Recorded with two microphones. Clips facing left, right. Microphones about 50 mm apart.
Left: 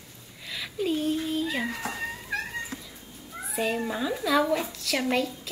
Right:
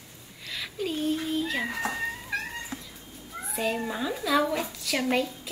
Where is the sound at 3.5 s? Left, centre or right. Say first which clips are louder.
Left 1 dB; centre.